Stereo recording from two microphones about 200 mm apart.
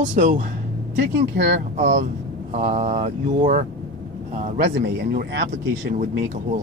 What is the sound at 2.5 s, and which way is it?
Speech, 35° right (ahead or behind).